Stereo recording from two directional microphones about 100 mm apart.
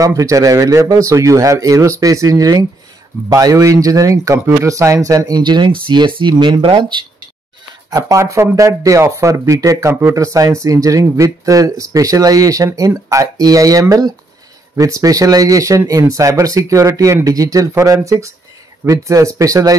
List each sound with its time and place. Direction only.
0.2 s speech: 35° right (ahead or behind)
5.4 s speech: 50° right (ahead or behind)
7.9 s speech: 35° right (ahead or behind)